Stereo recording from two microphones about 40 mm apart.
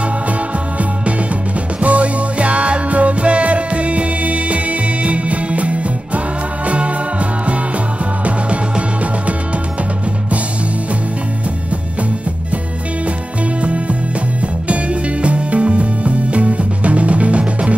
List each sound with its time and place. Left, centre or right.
0.0 s music: right
13.6 s music: right